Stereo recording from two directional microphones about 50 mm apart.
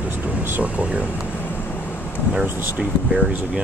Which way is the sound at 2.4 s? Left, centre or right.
Right.